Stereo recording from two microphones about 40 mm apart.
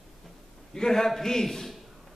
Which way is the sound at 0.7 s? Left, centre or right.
Centre.